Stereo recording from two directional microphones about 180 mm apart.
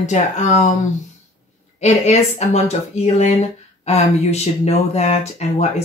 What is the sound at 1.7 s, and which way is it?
Speech, 40° left (ahead or behind).